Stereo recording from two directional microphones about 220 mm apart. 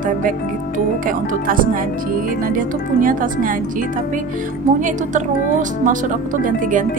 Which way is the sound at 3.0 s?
40° right (ahead or behind).